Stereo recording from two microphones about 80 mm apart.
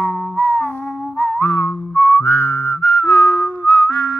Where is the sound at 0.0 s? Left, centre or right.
Left.